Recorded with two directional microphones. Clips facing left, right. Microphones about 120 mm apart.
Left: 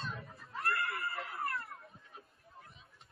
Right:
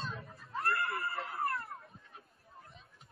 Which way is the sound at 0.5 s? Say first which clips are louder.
Right 2 dB; 30° right (ahead or behind).